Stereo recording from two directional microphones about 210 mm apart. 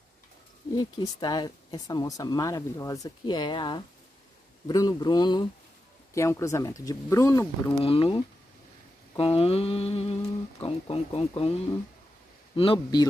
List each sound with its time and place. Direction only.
0.7 s speech: 20° left (ahead or behind)
7.8 s speech: 25° left (ahead or behind)
12.5 s speech: 25° left (ahead or behind)